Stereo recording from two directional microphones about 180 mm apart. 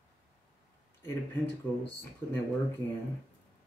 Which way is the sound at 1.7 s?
15° left (ahead or behind).